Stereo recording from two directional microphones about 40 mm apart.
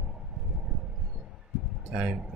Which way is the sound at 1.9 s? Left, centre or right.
Right.